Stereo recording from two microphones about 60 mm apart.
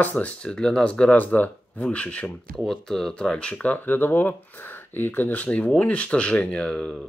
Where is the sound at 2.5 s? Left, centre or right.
Centre.